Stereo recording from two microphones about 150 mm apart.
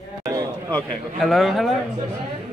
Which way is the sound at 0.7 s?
5° left (ahead or behind).